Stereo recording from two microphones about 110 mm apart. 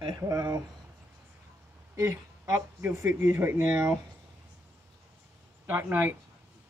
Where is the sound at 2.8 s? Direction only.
20° right (ahead or behind).